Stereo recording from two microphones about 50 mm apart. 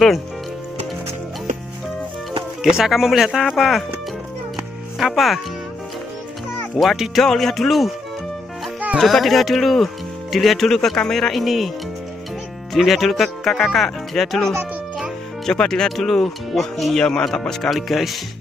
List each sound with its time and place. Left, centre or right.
2.6 s speech: centre
4.9 s speech: centre
6.8 s speech: centre
7.2 s speech: centre
8.9 s speech: centre
12.7 s speech: centre